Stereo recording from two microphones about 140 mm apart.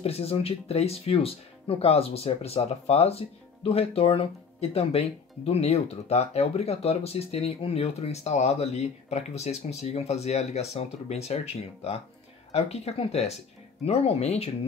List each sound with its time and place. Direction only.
0.0 s speech: 45° left (ahead or behind)